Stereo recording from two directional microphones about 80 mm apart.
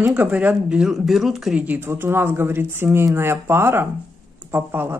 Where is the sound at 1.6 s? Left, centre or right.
Right.